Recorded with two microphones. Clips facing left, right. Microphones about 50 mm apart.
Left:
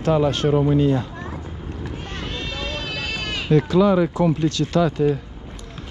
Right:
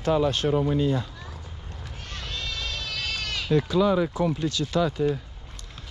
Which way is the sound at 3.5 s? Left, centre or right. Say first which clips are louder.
Left 5 dB; left.